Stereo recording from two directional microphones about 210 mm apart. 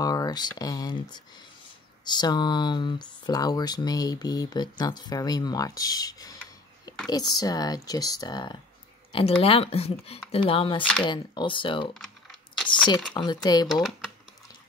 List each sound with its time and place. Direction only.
0.0 s speech: 15° left (ahead or behind)
10.8 s speech: 5° left (ahead or behind)
11.1 s speech: 20° left (ahead or behind)
13.1 s speech: 20° left (ahead or behind)
13.7 s speech: centre (ahead or behind)